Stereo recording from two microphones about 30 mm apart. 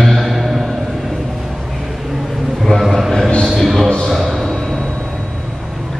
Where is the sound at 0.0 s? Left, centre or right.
Centre.